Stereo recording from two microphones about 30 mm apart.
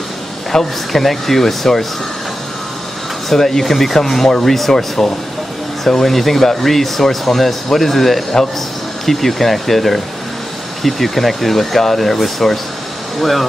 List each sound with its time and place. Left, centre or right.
0.5 s speech: centre
3.3 s speech: centre